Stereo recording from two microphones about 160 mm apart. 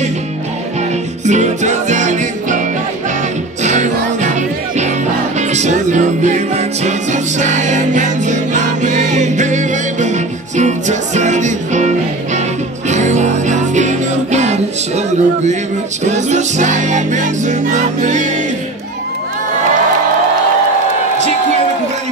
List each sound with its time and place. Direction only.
1.2 s music: 50° right (ahead or behind)
3.6 s music: 50° right (ahead or behind)
5.5 s music: 45° right (ahead or behind)
12.9 s music: 45° right (ahead or behind)